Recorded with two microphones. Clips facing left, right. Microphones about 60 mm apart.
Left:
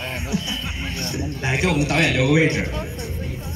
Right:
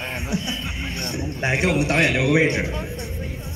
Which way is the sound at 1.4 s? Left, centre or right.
Right.